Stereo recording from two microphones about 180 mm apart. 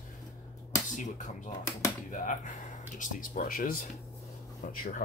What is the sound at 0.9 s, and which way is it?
Speech, 45° left (ahead or behind).